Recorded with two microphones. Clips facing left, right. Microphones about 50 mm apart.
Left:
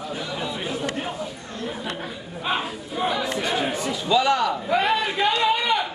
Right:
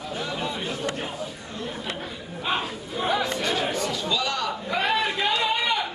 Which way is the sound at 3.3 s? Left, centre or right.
Centre.